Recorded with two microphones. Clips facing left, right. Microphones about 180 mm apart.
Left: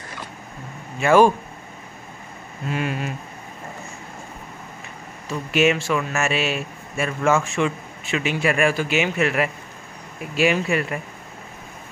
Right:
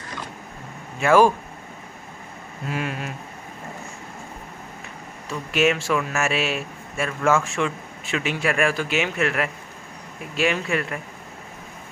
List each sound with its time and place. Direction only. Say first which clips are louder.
0.9 s speech: left 1 dB; centre (ahead or behind)
2.6 s speech: left 3 dB; centre (ahead or behind)
5.5 s speech: left 1 dB; centre (ahead or behind)